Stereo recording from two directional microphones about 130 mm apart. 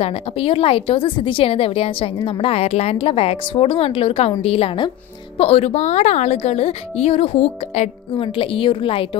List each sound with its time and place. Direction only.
0.0 s a woman's voice: 45° left (ahead or behind)